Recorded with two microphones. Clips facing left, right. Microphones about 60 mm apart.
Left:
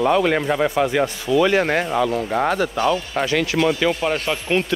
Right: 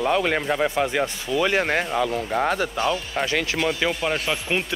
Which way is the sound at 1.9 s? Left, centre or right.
Left.